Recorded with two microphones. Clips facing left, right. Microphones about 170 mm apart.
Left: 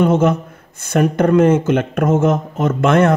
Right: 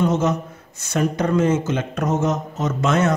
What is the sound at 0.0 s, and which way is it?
Speech, 55° left (ahead or behind).